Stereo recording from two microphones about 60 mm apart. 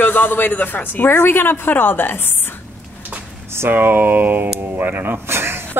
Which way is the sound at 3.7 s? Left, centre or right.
Right.